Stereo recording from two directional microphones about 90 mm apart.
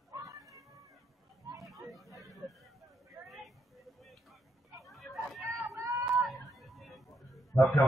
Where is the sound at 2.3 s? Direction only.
Centre (ahead or behind).